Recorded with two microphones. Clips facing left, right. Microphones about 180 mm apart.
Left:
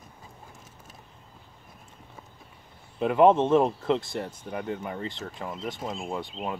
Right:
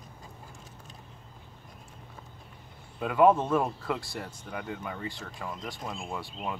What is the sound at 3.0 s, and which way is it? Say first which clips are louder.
Speech: left 3 dB; 25° left (ahead or behind).